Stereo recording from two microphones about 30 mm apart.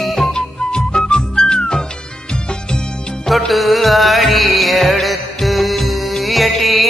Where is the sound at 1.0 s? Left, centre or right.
Left.